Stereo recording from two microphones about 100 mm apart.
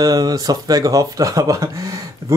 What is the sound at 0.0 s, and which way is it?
Speech, 40° right (ahead or behind).